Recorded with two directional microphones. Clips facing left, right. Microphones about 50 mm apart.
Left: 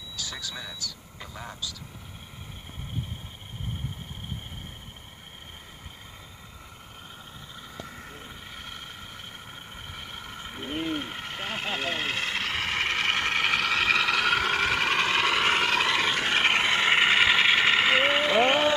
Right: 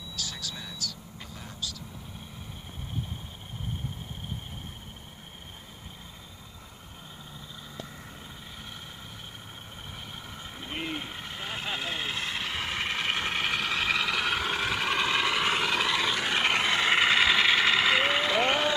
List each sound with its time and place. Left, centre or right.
8.5 s vehicle: left
9.9 s vehicle: left